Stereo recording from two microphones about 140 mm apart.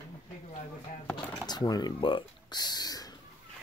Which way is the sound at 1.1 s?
30° left (ahead or behind).